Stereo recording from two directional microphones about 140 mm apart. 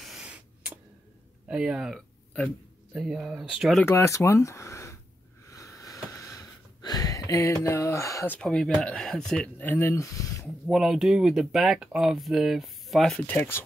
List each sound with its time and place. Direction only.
0.0 s spray: 5° right (ahead or behind)
1.5 s speech: 5° right (ahead or behind)
3.8 s speech: 20° left (ahead or behind)
5.5 s sniff: 25° left (ahead or behind)
8.4 s speech: 5° left (ahead or behind); by 10.5 s 20° left (ahead or behind)
10.7 s speech: 5° right (ahead or behind)
13.4 s speech: 15° left (ahead or behind)